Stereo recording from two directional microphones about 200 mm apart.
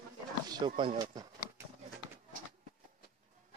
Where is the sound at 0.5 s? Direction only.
25° right (ahead or behind).